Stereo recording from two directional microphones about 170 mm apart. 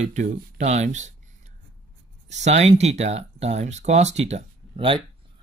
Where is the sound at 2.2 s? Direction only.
40° right (ahead or behind).